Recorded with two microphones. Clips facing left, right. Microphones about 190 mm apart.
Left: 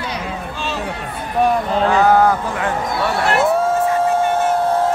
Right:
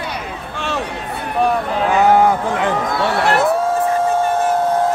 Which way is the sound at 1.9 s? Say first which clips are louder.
Right 2 dB; 15° right (ahead or behind).